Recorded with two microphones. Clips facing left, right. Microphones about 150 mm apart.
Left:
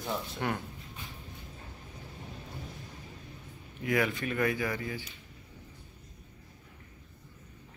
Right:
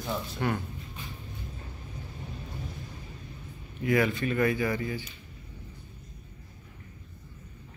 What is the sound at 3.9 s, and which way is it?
Speech, 5° left (ahead or behind).